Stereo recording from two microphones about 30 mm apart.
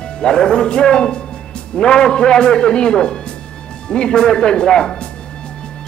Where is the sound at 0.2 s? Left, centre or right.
Left.